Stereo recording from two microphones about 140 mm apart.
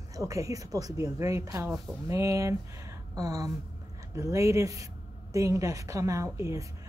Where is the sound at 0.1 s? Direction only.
25° right (ahead or behind).